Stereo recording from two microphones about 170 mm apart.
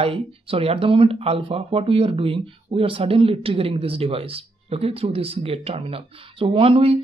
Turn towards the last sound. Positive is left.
turn(degrees=-35)  # may be behind; listen again after turning